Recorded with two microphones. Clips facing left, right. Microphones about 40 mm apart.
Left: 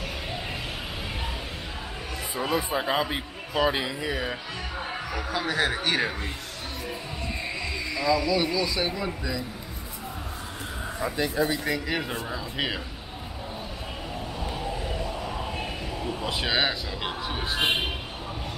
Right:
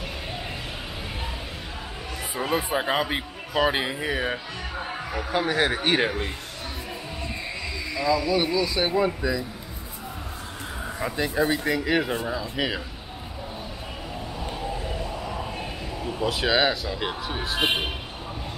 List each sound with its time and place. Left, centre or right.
2.5 s speech: centre; by 4.4 s right
4.7 s speech: centre
5.3 s a man's voice: right
7.9 s speech: centre
8.7 s speech: right
11.0 s speech: centre
11.2 s speech: centre
11.6 s speech: centre
12.4 s speech: centre
14.4 s vehicle: centre
15.3 s a sound: centre
16.3 s speech: centre